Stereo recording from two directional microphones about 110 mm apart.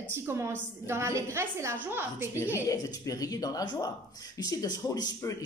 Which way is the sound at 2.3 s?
25° left (ahead or behind).